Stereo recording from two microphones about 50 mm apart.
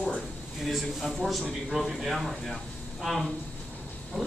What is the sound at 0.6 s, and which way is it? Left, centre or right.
A man's voice, centre.